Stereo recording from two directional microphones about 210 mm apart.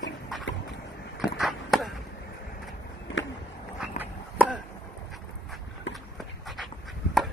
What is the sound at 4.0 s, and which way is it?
Chop, 5° right (ahead or behind).